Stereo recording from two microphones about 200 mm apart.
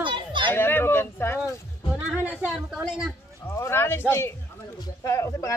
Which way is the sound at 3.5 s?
15° left (ahead or behind).